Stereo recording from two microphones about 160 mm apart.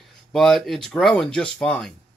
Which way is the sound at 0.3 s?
Centre (ahead or behind).